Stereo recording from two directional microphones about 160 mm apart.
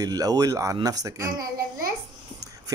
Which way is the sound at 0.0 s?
25° right (ahead or behind).